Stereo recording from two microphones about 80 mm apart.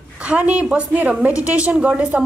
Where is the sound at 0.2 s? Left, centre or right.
Centre.